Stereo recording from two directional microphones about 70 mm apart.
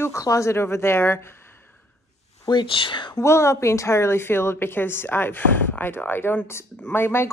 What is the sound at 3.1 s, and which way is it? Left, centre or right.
A woman's voice, left.